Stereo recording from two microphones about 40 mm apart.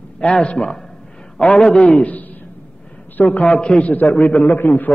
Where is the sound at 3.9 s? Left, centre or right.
Left.